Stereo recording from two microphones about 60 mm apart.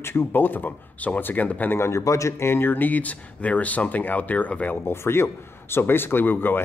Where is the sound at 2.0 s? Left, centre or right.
Left.